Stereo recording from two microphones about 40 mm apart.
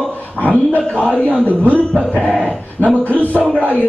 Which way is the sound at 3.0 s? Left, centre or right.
Left.